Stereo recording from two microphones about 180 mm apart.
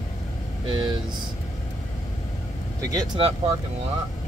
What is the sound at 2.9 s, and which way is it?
Speech, 25° right (ahead or behind).